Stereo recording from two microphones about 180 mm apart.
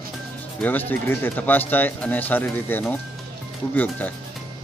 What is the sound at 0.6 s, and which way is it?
Speech, 10° left (ahead or behind).